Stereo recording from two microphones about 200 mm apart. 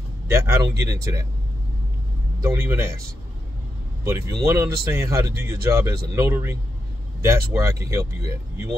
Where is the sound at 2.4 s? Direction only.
10° right (ahead or behind).